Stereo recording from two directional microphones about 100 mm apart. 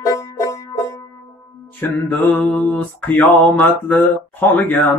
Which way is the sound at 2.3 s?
15° left (ahead or behind).